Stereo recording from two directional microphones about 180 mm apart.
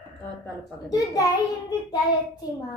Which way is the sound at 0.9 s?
20° left (ahead or behind).